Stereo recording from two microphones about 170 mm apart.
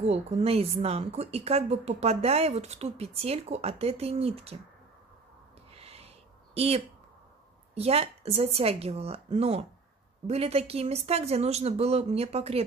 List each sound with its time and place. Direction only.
0.0 s a woman's voice: 35° right (ahead or behind)
5.7 s a sound: 35° right (ahead or behind)
7.7 s a woman's voice: 35° right (ahead or behind)